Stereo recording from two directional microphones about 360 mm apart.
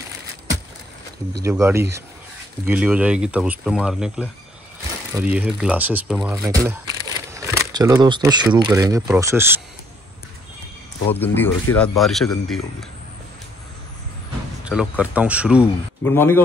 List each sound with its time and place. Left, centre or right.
1.4 s speech: centre
11.1 s speech: centre
14.6 s speech: centre